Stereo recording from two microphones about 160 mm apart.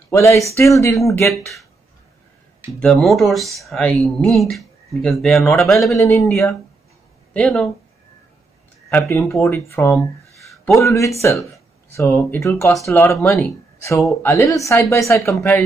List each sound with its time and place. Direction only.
0.1 s speech: 20° left (ahead or behind)
1.2 s speech: centre (ahead or behind)
2.8 s speech: 5° left (ahead or behind)
5.8 s speech: 20° left (ahead or behind)
7.3 s speech: centre (ahead or behind)
8.8 s speech: 20° left (ahead or behind)
10.3 s a sound: centre (ahead or behind)
10.7 s speech: 20° left (ahead or behind)